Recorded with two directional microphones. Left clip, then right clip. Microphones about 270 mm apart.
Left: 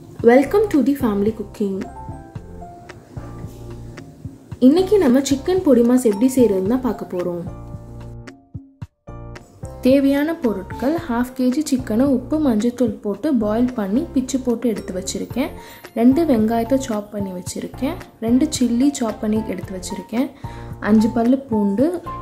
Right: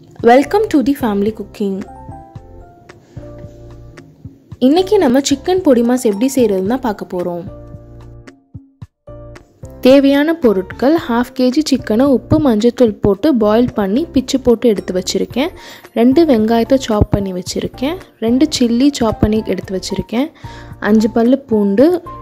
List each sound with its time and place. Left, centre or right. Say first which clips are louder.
0.2 s speech: right 4 dB; right
4.6 s speech: right 3 dB; right
9.8 s speech: right 7 dB; right